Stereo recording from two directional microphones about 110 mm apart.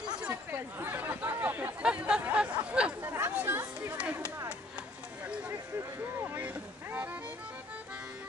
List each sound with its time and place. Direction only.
0.3 s chatter: 20° right (ahead or behind)
6.2 s boat: 15° right (ahead or behind)